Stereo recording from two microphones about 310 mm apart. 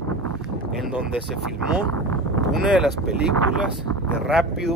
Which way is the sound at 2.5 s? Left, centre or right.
Centre.